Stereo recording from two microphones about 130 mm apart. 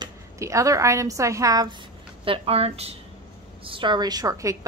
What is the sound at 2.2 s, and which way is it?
A woman's voice, 45° right (ahead or behind).